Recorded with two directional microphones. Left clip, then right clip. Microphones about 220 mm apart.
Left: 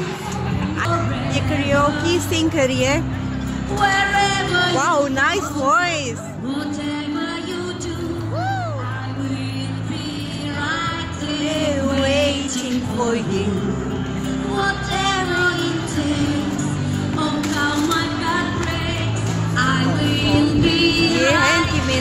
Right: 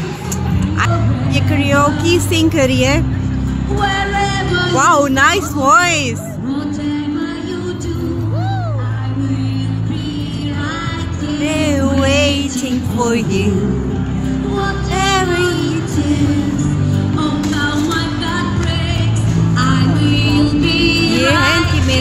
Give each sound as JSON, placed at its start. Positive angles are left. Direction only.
{"t": 1.3, "sound": "a sound", "side_deg": -20}
{"t": 3.8, "sound": "music", "side_deg": 10}
{"t": 4.7, "sound": "speech", "side_deg": -25}
{"t": 11.4, "sound": "music", "side_deg": -25}
{"t": 13.0, "sound": "speech", "side_deg": -20}
{"t": 15.3, "sound": "music", "side_deg": 5}
{"t": 17.6, "sound": "music", "side_deg": -30}
{"t": 19.5, "sound": "music", "side_deg": -50}
{"t": 21.1, "sound": "music", "side_deg": -10}